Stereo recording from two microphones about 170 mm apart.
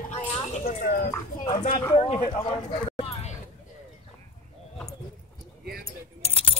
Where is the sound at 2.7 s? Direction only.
40° left (ahead or behind).